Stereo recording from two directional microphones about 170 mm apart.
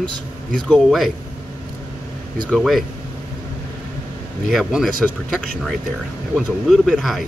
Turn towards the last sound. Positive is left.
turn(degrees=0)  # may be behind; listen again after turning